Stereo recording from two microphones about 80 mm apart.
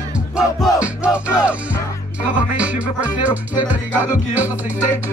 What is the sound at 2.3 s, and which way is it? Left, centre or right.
Music, centre.